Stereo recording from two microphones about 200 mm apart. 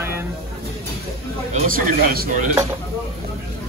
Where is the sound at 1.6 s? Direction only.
45° right (ahead or behind).